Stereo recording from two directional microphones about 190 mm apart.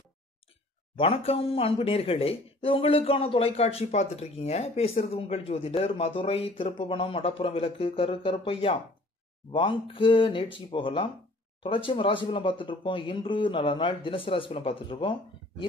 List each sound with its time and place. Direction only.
0.9 s speech: 30° left (ahead or behind)